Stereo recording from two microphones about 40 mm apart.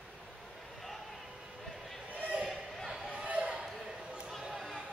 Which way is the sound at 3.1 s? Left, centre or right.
Right.